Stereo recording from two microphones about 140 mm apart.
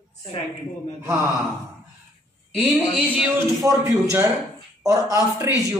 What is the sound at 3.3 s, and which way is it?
Speech, 20° right (ahead or behind).